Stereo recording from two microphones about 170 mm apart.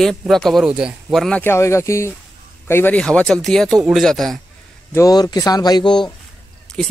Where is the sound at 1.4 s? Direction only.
15° left (ahead or behind).